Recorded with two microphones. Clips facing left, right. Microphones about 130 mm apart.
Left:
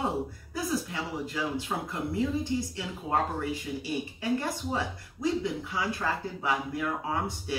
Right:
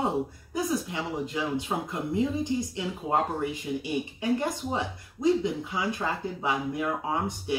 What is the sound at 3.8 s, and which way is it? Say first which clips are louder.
Speech: right 2 dB; 20° right (ahead or behind).